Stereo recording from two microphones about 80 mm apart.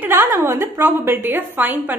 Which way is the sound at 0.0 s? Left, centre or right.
Right.